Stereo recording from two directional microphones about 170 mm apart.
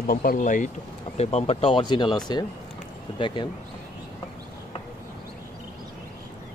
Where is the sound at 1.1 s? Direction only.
40° left (ahead or behind).